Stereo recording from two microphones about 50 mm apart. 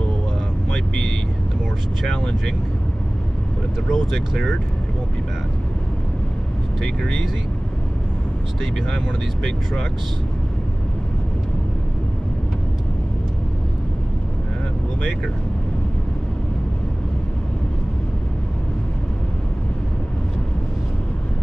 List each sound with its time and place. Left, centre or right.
0.7 s vehicle: centre
2.0 s speech: centre
3.9 s speech: centre
8.9 s speech: centre